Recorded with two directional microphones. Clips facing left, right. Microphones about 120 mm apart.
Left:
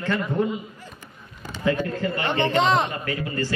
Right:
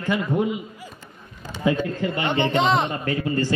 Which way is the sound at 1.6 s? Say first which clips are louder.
Right 1 dB; 15° right (ahead or behind).